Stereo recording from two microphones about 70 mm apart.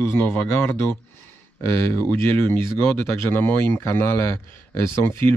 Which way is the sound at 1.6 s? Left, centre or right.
Left.